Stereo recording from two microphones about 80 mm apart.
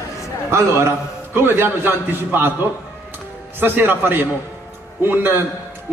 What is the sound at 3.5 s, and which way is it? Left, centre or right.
A man's voice, right.